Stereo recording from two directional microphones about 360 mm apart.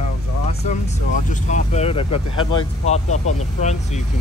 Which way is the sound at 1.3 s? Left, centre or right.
Centre.